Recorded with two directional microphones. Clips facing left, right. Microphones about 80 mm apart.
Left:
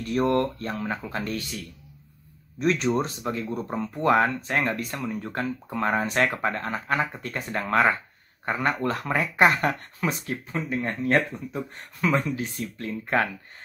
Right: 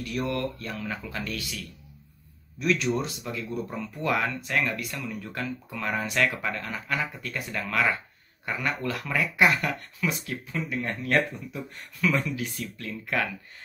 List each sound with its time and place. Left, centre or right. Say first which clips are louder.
0.0 s speech: left 6 dB; left